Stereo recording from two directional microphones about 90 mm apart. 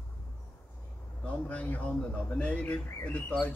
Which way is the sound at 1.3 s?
15° left (ahead or behind).